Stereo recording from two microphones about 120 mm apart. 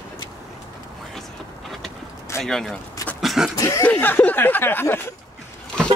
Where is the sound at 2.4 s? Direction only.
5° left (ahead or behind).